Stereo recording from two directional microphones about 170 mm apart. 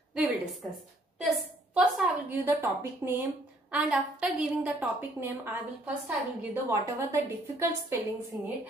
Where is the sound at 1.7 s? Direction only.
10° right (ahead or behind).